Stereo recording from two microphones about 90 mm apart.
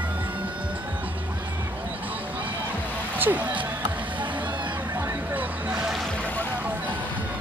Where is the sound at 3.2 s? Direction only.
20° right (ahead or behind).